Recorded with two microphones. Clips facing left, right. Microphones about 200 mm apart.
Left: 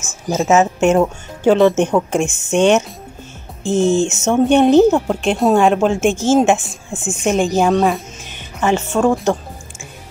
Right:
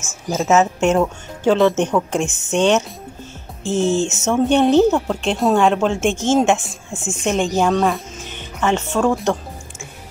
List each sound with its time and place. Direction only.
0.4 s speech: 10° left (ahead or behind)
2.0 s speech: 10° left (ahead or behind)
3.8 s speech: 15° left (ahead or behind)